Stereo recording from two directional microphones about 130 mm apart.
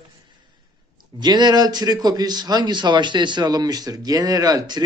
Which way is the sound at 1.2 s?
35° right (ahead or behind).